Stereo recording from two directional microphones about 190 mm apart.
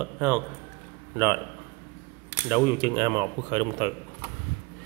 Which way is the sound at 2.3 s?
10° right (ahead or behind).